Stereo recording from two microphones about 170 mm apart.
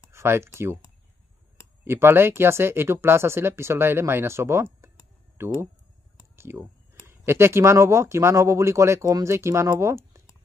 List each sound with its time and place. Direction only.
0.1 s speech: 15° right (ahead or behind)
1.9 s speech: 15° right (ahead or behind)
6.3 s a sound: 15° right (ahead or behind)
7.1 s speech: 15° right (ahead or behind)